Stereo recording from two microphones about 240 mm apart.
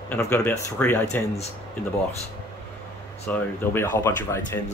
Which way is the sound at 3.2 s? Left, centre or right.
Centre.